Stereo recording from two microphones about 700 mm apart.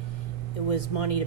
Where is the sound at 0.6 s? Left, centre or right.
Left.